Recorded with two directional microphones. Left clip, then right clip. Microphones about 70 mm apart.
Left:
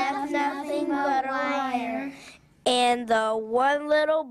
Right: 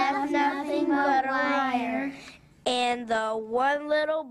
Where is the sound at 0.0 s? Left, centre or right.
Left.